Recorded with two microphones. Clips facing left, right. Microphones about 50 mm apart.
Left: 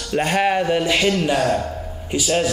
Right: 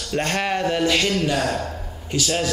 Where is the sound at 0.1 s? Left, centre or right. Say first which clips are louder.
Left 4 dB; centre.